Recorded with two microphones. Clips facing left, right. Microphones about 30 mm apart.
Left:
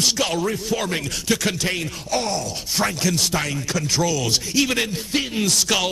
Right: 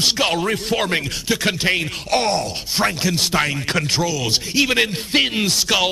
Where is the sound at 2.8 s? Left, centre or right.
Right.